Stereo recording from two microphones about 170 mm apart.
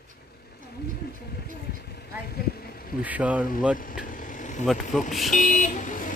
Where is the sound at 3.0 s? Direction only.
10° right (ahead or behind).